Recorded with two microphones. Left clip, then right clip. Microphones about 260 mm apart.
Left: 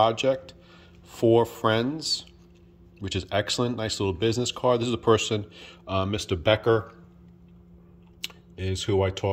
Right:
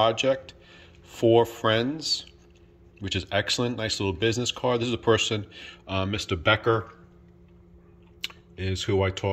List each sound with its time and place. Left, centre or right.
0.0 s speech: centre
8.2 s speech: centre